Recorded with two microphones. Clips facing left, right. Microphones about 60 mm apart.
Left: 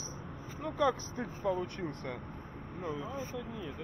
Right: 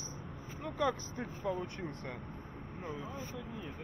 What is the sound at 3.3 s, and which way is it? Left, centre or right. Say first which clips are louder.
Speech: left 3 dB; left.